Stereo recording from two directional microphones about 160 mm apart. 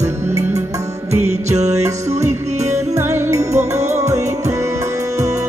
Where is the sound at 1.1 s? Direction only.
45° right (ahead or behind).